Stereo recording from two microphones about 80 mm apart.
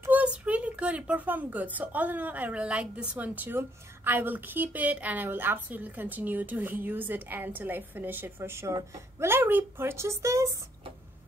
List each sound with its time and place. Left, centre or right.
0.1 s a woman's voice: centre; by 10.6 s right